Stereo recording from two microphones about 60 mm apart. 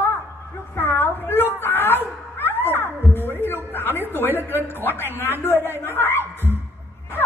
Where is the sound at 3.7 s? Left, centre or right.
Left.